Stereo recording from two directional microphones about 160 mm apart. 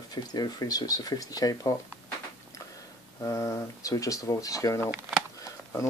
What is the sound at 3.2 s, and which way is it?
Speech, 20° left (ahead or behind).